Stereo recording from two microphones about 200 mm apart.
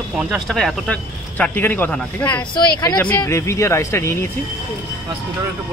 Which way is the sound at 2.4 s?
20° left (ahead or behind).